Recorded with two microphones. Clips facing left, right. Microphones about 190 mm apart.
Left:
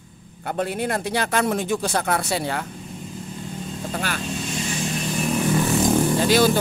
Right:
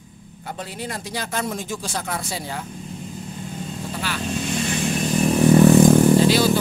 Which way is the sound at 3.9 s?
50° left (ahead or behind).